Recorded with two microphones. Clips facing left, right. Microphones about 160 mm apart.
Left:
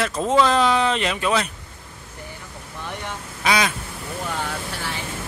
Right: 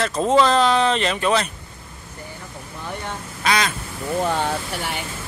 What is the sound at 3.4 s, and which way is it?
Speech, 10° left (ahead or behind).